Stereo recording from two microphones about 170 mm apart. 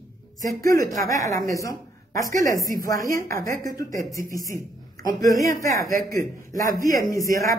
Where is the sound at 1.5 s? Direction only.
20° left (ahead or behind).